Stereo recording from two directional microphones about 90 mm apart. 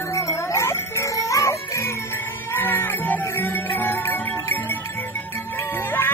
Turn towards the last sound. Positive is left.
turn(degrees=20)  # may be behind; listen again after turning